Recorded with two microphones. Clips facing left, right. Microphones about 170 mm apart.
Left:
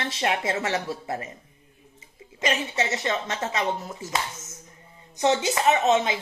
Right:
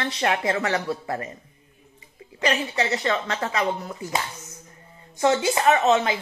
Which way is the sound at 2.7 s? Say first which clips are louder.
Right 2 dB; 20° left (ahead or behind).